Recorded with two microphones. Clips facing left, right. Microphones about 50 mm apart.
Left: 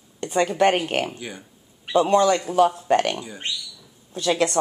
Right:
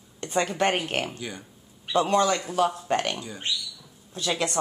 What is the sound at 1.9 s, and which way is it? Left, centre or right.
A woman's voice, left.